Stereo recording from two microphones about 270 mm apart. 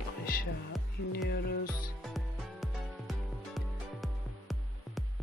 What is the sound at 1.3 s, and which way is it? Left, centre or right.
Music, left.